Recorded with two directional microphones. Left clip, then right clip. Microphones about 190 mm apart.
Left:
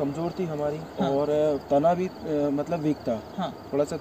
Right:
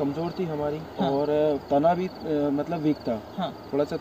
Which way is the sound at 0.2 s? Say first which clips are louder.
Even; 15° left (ahead or behind).